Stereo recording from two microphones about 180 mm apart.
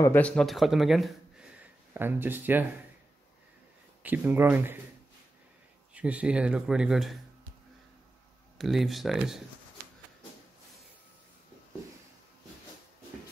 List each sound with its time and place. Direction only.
0.0 s speech: 10° left (ahead or behind); by 2.6 s 10° right (ahead or behind)
4.0 s speech: 10° right (ahead or behind)
5.9 s speech: 5° right (ahead or behind)
8.5 s speech: centre (ahead or behind)